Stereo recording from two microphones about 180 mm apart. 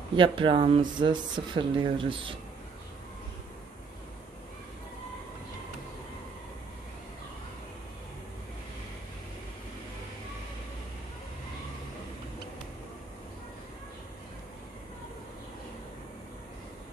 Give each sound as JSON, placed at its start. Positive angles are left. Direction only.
{"t": 0.1, "sound": "speech", "side_deg": -30}